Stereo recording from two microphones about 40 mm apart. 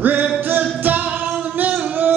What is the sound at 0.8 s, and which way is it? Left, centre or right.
Singing, right.